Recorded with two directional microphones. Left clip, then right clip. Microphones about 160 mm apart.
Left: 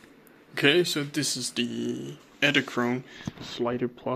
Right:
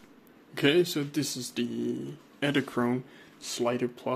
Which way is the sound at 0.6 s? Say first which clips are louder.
Left 2 dB; 10° right (ahead or behind).